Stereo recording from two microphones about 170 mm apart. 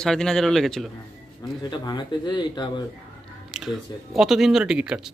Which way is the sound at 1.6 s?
25° left (ahead or behind).